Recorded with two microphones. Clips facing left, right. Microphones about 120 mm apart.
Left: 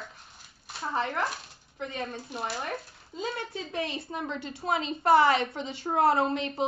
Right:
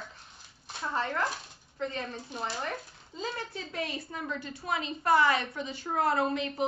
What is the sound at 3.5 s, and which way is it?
A woman's voice, 25° left (ahead or behind).